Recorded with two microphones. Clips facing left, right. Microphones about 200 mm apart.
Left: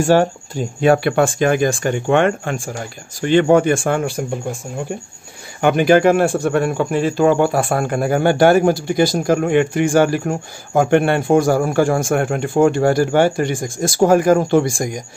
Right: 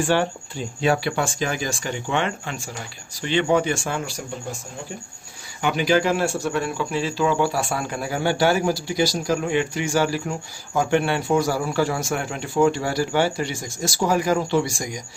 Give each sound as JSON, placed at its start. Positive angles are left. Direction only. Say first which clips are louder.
{"t": 0.0, "sound": "speech", "louder": "left 7 dB", "side_deg": 45}
{"t": 5.6, "sound": "speech", "louder": "left 8 dB", "side_deg": 55}